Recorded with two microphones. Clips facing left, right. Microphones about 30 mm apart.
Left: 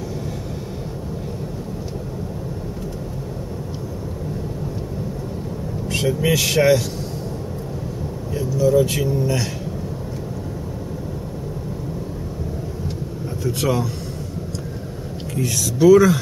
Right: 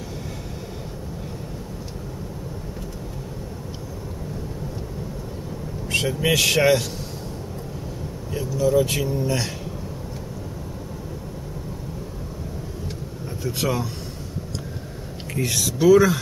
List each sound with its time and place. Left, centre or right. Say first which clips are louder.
5.9 s speech: left 2 dB; centre
8.3 s speech: left 3 dB; centre
13.4 s speech: left 3 dB; centre
15.3 s speech: left 1 dB; right
15.8 s speech: left 3 dB; centre